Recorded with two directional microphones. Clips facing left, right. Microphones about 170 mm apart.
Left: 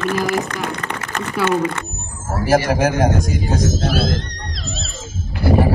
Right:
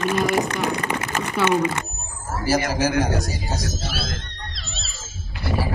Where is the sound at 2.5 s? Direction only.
55° left (ahead or behind).